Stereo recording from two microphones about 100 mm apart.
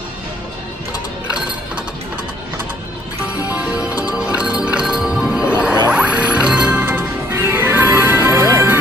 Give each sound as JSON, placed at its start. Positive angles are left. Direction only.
{"t": 3.5, "sound": "music", "side_deg": -15}